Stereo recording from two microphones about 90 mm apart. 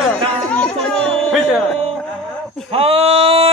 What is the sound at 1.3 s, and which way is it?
Music, centre (ahead or behind).